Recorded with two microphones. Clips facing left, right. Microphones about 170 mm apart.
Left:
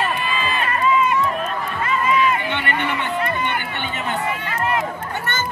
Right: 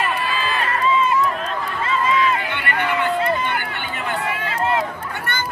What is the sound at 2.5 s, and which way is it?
Crowd, 20° left (ahead or behind).